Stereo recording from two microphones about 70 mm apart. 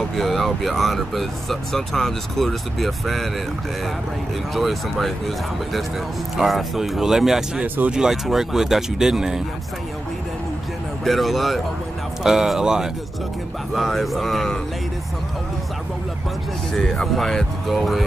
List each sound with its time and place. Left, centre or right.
0.1 s speech: centre
4.6 s speech: centre
6.3 s speech: centre
7.6 s speech: right
7.9 s speech: centre
11.1 s speech: centre
13.7 s speech: centre
16.7 s speech: centre